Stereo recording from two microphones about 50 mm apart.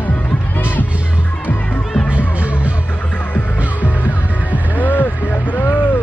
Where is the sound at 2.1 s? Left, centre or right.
Right.